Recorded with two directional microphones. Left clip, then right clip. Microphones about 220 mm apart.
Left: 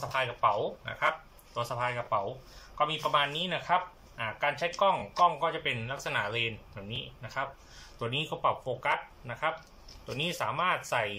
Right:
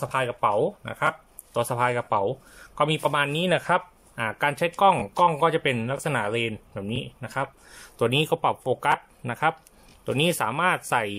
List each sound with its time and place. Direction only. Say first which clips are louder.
0.1 s speech: right 4 dB; 40° right (ahead or behind)